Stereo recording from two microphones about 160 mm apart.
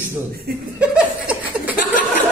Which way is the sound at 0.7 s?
10° right (ahead or behind).